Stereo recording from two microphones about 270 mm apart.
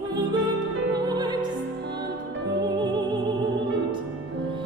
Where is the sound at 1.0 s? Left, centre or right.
Centre.